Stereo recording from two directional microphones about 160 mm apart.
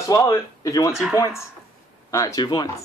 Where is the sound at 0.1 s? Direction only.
20° left (ahead or behind).